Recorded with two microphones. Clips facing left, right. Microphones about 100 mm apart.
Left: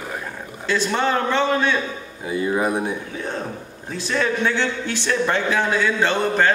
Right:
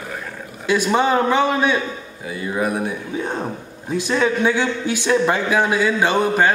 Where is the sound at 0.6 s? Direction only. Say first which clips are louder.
Right 4 dB; 15° right (ahead or behind).